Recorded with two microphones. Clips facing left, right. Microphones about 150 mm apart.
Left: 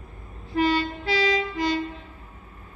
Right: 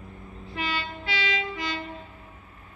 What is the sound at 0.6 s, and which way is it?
Train, 40° left (ahead or behind).